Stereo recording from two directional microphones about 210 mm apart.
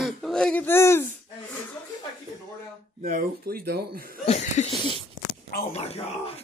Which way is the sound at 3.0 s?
45° right (ahead or behind).